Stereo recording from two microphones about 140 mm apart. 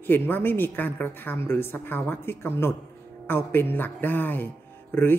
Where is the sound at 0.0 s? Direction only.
15° left (ahead or behind).